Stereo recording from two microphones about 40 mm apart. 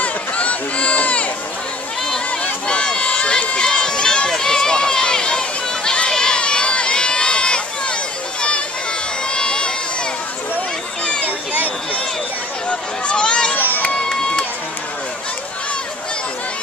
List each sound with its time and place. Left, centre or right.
0.0 s run: left
2.4 s run: left
11.2 s a sound: right
12.6 s a sound: left
13.6 s run: left
13.8 s run: left